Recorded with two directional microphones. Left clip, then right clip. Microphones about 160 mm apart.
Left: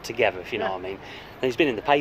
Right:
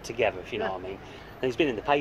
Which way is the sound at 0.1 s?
25° left (ahead or behind).